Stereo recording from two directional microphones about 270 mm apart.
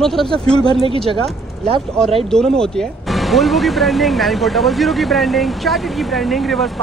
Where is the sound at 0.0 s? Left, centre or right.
Centre.